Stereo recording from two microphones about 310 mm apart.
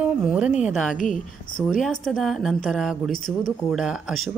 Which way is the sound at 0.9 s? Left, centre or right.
Left.